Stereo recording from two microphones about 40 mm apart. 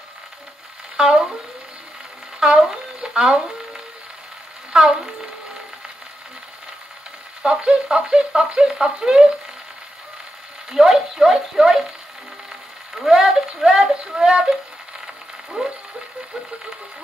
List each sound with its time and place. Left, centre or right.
0.9 s speech: centre
2.4 s speech: centre
4.7 s speech: centre
7.4 s speech: centre
10.7 s speech: centre
12.9 s speech: centre